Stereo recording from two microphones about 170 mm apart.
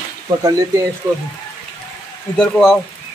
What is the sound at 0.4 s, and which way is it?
Speech, 20° right (ahead or behind).